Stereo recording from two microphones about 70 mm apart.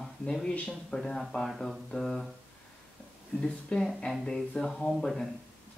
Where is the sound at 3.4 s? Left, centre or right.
Centre.